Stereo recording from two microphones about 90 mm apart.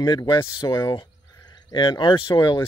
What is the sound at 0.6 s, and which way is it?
Speech, 40° left (ahead or behind).